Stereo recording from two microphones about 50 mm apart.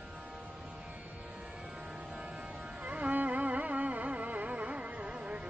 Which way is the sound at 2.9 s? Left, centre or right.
Right.